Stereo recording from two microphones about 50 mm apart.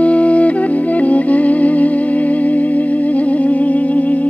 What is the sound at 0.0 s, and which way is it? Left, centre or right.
Music, left.